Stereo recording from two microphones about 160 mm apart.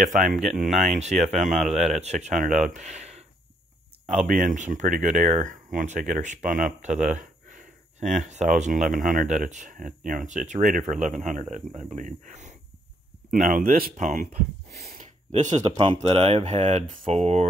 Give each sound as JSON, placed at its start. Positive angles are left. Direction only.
{"t": 0.3, "sound": "speech", "side_deg": 0}
{"t": 0.8, "sound": "speech", "side_deg": -45}
{"t": 4.3, "sound": "speech", "side_deg": -55}
{"t": 13.3, "sound": "speech", "side_deg": -55}
{"t": 15.3, "sound": "speech", "side_deg": -50}
{"t": 16.1, "sound": "speech", "side_deg": -35}
{"t": 17.1, "sound": "speech", "side_deg": -40}